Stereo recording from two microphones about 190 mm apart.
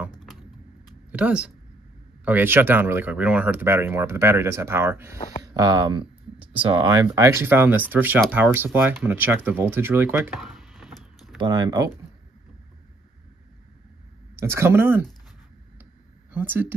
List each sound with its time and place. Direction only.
0.2 s typing: centre (ahead or behind)
1.1 s speech: 5° right (ahead or behind); by 7.0 s 25° right (ahead or behind)
7.1 s speech: 15° right (ahead or behind)
10.6 s vehicle: centre (ahead or behind)
11.4 s speech: 20° right (ahead or behind)
14.3 s speech: 15° right (ahead or behind)
15.8 s a sound: 10° right (ahead or behind)